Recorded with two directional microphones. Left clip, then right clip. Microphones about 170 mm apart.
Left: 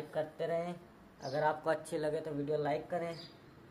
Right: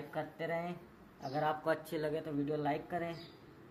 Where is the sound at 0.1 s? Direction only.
20° left (ahead or behind).